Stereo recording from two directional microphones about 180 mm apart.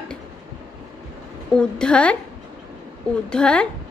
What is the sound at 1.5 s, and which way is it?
Speech, 5° left (ahead or behind).